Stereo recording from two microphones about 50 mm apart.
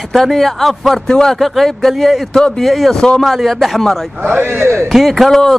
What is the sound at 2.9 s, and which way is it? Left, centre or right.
Speech, centre.